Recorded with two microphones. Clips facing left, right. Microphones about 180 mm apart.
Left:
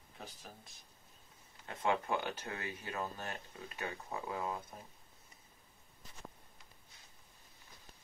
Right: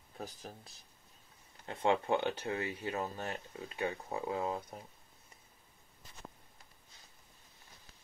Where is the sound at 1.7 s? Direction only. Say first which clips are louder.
Right 4 dB; 25° right (ahead or behind).